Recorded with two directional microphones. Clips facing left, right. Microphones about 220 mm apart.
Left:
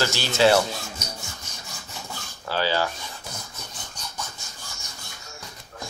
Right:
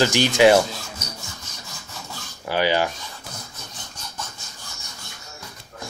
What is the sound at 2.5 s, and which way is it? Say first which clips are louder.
Speech: right 4 dB; 15° right (ahead or behind).